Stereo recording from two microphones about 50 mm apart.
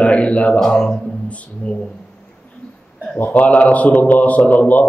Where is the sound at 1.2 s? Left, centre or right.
Left.